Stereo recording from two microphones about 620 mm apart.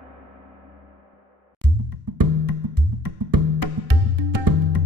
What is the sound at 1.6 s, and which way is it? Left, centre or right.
Music, right.